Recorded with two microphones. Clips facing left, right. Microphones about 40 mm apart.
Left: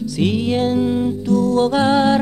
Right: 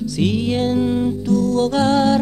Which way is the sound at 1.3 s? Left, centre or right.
Left.